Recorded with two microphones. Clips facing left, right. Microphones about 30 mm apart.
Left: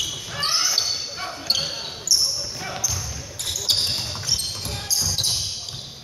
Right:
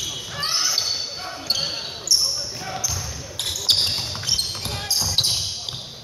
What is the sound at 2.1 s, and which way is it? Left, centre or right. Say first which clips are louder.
Basketball bounce: right 1 dB; right.